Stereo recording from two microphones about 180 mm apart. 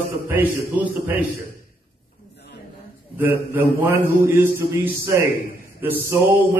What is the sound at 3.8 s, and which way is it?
A man's voice, 15° right (ahead or behind).